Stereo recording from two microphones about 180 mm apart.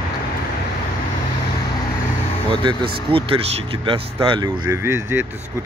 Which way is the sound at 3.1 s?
30° right (ahead or behind).